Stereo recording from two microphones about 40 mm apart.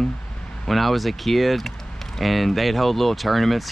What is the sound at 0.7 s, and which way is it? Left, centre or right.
Speech, centre.